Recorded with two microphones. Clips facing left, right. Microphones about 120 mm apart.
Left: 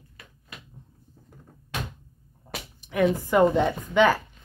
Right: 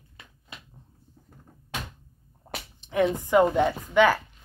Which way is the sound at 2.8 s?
25° right (ahead or behind).